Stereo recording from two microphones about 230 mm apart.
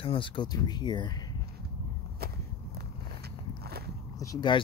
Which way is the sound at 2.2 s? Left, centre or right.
Right.